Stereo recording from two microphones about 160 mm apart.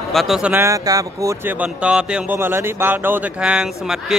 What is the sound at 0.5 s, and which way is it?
Speech, 20° right (ahead or behind).